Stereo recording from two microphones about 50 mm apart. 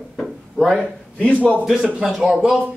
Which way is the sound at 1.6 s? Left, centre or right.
Centre.